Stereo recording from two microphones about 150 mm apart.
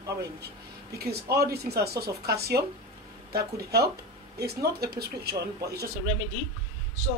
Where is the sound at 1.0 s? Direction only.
90° right.